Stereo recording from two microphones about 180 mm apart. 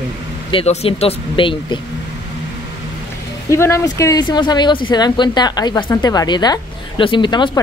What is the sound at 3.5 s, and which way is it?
Speech, 15° left (ahead or behind).